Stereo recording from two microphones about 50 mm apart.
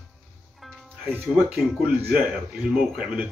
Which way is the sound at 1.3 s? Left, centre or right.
Centre.